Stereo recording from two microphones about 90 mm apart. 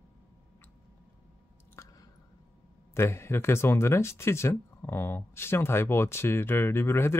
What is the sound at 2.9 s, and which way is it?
Speech, 30° left (ahead or behind).